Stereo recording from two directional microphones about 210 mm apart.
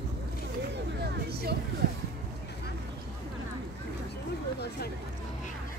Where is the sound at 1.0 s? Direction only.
50° right (ahead or behind).